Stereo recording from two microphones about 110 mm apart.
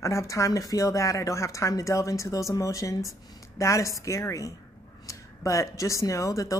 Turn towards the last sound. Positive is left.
turn(degrees=30)  # may be behind; listen again after turning